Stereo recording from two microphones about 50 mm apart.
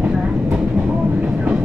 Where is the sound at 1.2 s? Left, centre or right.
Right.